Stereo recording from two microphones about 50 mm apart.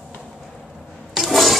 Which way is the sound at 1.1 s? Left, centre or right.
Centre.